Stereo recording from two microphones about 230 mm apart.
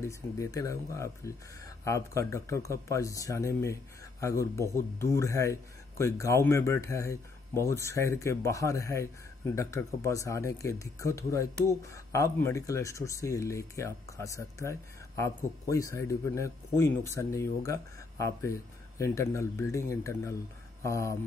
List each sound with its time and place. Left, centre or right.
0.0 s speech: centre